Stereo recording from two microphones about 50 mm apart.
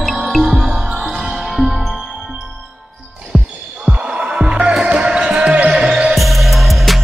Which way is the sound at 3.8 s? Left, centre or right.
Centre.